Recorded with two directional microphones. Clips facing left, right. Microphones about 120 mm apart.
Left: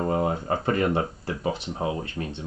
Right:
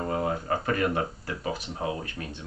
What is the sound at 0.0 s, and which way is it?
Speech, 25° left (ahead or behind).